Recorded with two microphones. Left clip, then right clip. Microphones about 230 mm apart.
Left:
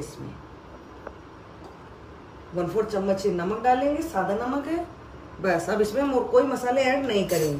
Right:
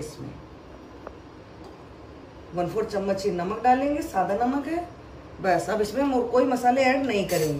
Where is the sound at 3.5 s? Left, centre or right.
Left.